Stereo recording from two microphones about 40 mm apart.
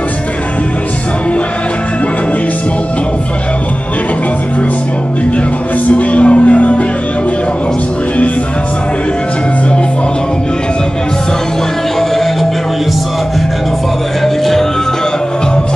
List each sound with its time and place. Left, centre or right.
5.9 s music: left
14.2 s music: centre